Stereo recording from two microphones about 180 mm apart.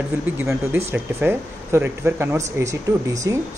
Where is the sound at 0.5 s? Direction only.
15° right (ahead or behind).